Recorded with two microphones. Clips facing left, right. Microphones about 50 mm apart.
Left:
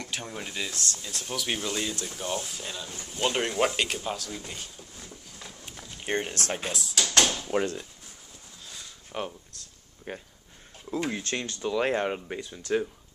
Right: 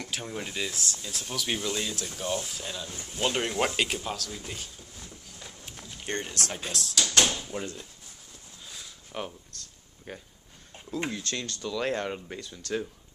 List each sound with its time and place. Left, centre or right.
0.0 s speech: centre
4.4 s a sound: centre
6.2 s speech: left
6.7 s speech: centre
7.5 s speech: left
8.7 s a sound: centre
10.1 s speech: centre